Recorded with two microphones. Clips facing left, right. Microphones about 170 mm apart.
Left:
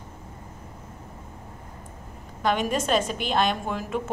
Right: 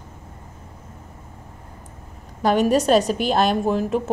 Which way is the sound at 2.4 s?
35° right (ahead or behind).